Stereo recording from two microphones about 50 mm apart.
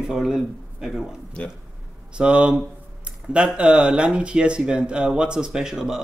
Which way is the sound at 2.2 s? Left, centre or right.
Right.